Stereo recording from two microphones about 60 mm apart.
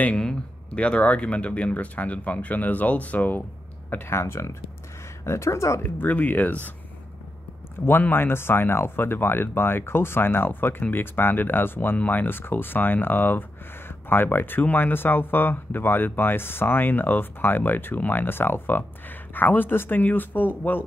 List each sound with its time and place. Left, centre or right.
0.2 s speech: centre
4.0 s speech: left
5.9 s speech: left
7.8 s speech: left